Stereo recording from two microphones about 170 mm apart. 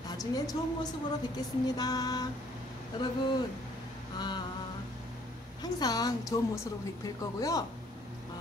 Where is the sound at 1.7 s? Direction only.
20° left (ahead or behind).